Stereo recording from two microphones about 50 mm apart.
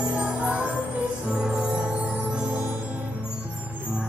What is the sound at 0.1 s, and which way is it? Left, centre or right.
Music, right.